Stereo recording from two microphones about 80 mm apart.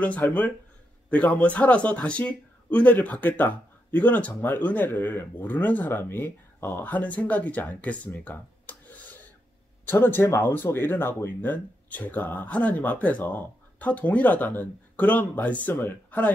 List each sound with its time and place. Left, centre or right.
0.0 s a man's voice: centre